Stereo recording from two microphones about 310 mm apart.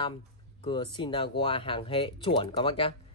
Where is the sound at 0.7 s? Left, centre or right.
Centre.